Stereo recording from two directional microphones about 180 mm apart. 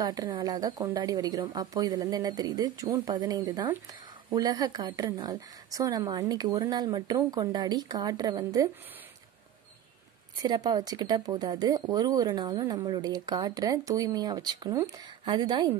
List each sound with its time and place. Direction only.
0.0 s speech: 25° right (ahead or behind)
10.4 s speech: 20° right (ahead or behind)